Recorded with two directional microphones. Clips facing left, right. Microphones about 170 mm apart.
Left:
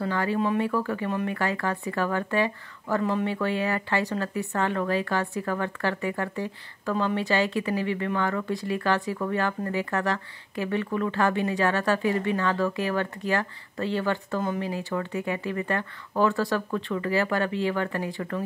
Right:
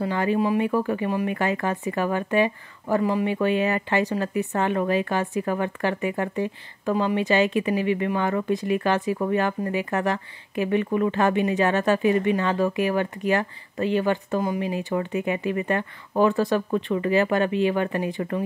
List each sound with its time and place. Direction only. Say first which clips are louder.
0.0 s speech: right 3 dB; 15° right (ahead or behind)